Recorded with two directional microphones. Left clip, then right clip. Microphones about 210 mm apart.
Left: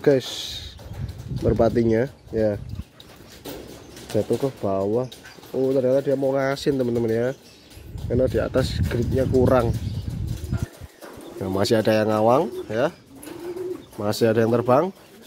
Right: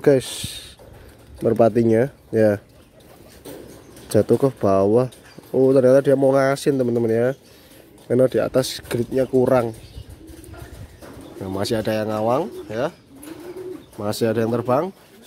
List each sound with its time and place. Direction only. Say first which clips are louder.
0.0 s speech: right 2 dB; 10° right (ahead or behind)
2.3 s speech: right 5 dB; 30° right (ahead or behind)
4.1 s speech: right 6 dB; 35° right (ahead or behind)
6.4 s speech: right 4 dB; 15° right (ahead or behind)
11.4 s speech: left 3 dB; 10° left (ahead or behind)
13.9 s speech: left 1 dB; centre (ahead or behind)